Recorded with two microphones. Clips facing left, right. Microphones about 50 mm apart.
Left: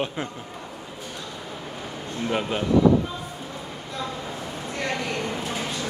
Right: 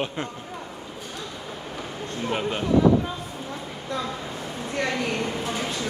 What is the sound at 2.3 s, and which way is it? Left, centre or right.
Speech, centre.